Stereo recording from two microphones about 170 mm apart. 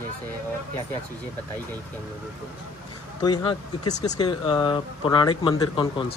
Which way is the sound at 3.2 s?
25° left (ahead or behind).